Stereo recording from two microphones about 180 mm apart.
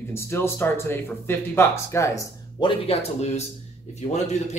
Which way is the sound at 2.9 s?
35° left (ahead or behind).